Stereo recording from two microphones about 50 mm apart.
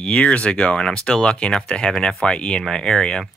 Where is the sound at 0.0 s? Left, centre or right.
Centre.